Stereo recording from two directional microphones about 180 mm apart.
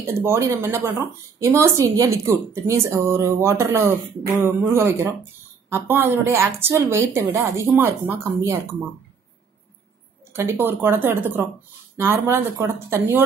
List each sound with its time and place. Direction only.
0.0 s a woman's voice: 15° right (ahead or behind)
10.3 s a woman's voice: 15° right (ahead or behind)